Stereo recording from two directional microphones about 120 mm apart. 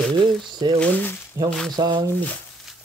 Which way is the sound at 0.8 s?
15° left (ahead or behind).